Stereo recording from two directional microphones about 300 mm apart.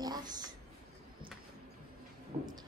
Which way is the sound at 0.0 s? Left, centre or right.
Centre.